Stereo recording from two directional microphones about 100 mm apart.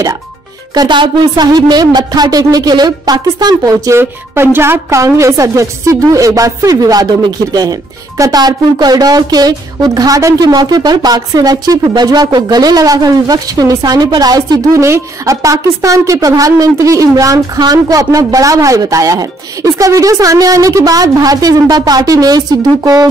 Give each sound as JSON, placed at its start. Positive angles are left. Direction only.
{"t": 0.7, "sound": "a woman's voice", "side_deg": -50}
{"t": 4.0, "sound": "a woman's voice", "side_deg": -25}